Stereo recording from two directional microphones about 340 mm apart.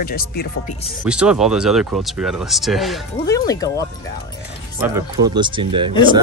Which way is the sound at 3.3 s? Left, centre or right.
Centre.